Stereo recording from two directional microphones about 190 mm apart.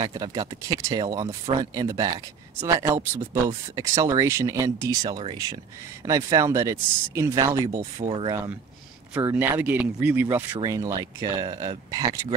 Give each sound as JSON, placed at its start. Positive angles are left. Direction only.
{"t": 0.0, "sound": "speech", "side_deg": -20}
{"t": 8.1, "sound": "speech", "side_deg": -30}
{"t": 9.1, "sound": "speech", "side_deg": -10}